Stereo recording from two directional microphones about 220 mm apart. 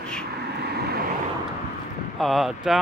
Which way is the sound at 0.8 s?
45° right (ahead or behind).